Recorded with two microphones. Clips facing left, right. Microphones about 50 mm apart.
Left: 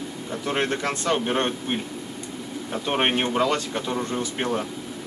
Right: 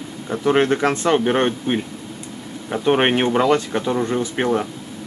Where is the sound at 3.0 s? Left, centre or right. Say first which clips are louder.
Right 5 dB; right.